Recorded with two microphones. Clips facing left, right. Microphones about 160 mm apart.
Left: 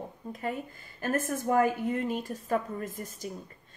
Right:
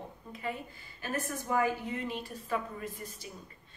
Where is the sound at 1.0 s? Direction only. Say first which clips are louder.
Left 6 dB; 50° left (ahead or behind).